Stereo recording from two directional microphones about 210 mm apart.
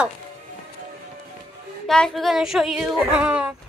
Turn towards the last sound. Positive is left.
turn(degrees=-5)  # may be behind; listen again after turning